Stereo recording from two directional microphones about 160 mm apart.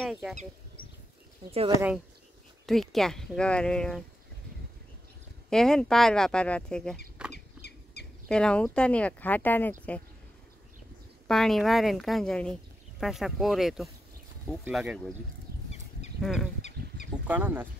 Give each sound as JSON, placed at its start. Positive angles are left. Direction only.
{"t": 0.0, "sound": "speech", "side_deg": 0}
{"t": 2.6, "sound": "speech", "side_deg": 0}
{"t": 5.5, "sound": "speech", "side_deg": 5}
{"t": 7.3, "sound": "rodents", "side_deg": 90}
{"t": 8.3, "sound": "speech", "side_deg": 5}
{"t": 11.2, "sound": "speech", "side_deg": 0}
{"t": 16.2, "sound": "speech", "side_deg": 0}